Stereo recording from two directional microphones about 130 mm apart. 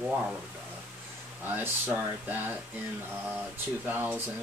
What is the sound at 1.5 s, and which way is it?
Speech, 15° right (ahead or behind).